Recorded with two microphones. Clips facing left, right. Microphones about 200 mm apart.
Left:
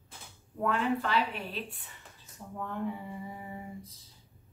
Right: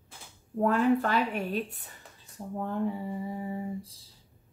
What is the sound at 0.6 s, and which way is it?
A woman's voice, 40° right (ahead or behind).